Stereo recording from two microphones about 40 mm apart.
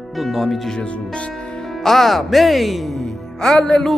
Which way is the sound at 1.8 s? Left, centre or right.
Centre.